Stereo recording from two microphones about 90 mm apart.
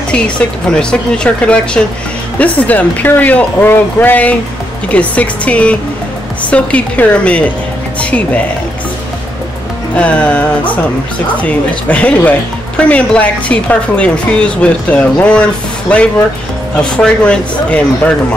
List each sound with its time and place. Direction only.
0.1 s speech: 10° left (ahead or behind)
9.9 s speech: 10° left (ahead or behind)
16.7 s speech: 10° left (ahead or behind)